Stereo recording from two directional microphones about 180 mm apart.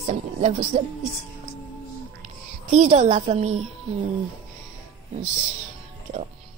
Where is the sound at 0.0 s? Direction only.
40° right (ahead or behind).